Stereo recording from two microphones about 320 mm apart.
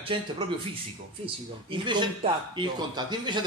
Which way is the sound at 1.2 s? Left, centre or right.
Centre.